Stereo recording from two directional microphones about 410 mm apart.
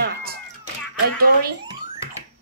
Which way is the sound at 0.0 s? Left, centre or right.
Right.